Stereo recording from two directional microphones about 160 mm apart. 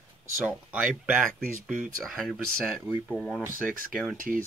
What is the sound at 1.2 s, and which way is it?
Speech, 55° right (ahead or behind).